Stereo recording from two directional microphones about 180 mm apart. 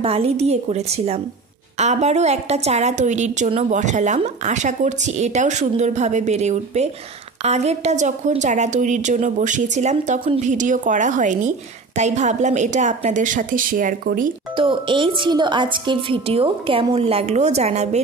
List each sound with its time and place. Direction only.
0.0 s a woman's voice: 35° right (ahead or behind); by 14.3 s 50° right (ahead or behind)
14.5 s a woman's voice: 30° right (ahead or behind)